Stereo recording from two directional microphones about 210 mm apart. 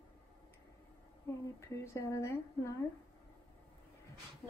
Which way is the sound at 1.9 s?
10° left (ahead or behind).